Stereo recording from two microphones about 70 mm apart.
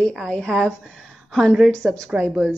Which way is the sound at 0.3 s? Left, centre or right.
Centre.